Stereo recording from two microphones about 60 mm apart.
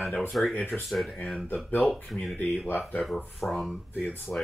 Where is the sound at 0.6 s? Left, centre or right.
Left.